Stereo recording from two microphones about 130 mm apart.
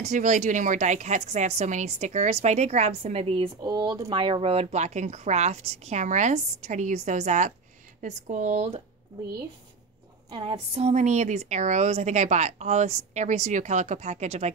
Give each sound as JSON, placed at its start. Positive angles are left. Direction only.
{"t": 0.0, "sound": "a woman's voice", "side_deg": -70}
{"t": 3.6, "sound": "a woman's voice", "side_deg": -35}
{"t": 10.3, "sound": "a woman's voice", "side_deg": -45}